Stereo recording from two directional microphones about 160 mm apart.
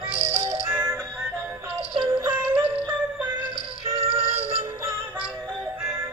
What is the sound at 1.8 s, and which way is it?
Music, 35° right (ahead or behind).